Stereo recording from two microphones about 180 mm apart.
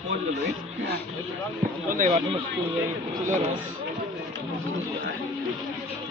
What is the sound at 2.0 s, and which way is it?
Speech, 35° right (ahead or behind).